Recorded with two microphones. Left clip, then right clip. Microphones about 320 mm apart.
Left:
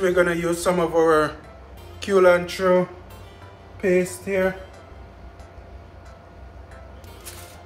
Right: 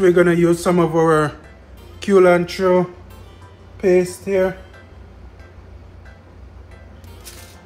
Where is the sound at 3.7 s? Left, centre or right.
Centre.